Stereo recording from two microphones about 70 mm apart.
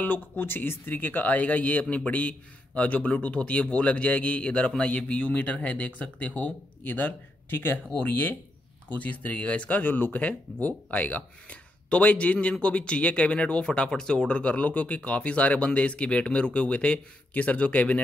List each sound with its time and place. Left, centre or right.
0.0 s speech: left